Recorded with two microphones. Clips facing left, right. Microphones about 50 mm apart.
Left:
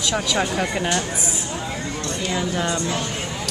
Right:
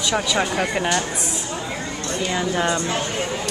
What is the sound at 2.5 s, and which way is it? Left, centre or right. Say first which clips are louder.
Speech: right 2 dB; right.